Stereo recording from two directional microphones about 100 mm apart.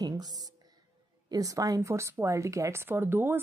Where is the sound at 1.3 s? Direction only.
35° right (ahead or behind).